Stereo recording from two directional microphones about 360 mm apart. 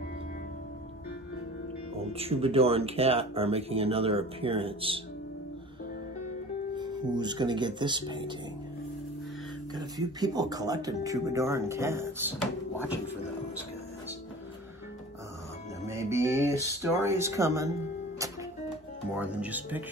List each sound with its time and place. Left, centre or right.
2.0 s speech: centre
6.7 s speech: centre
9.8 s speech: centre
15.9 s speech: centre
19.1 s speech: centre